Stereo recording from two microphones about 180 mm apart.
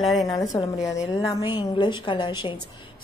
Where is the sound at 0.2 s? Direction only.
20° left (ahead or behind).